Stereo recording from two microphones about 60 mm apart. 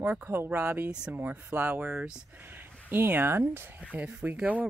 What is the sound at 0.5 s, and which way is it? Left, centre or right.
Speech, right.